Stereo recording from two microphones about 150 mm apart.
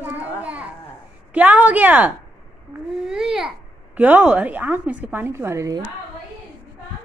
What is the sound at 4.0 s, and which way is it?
A woman's voice, 10° right (ahead or behind).